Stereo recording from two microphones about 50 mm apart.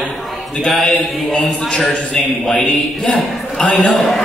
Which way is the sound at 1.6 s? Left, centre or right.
Centre.